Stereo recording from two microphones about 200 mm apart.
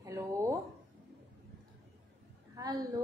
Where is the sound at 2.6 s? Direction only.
20° right (ahead or behind).